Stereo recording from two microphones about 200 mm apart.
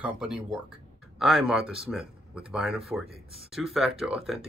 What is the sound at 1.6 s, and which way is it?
Speech, 25° right (ahead or behind).